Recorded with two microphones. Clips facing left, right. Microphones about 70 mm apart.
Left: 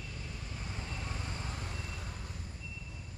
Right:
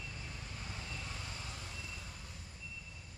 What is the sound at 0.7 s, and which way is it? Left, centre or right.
Vehicle, left.